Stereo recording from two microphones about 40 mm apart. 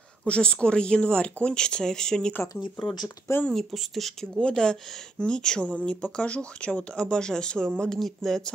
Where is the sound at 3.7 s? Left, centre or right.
Centre.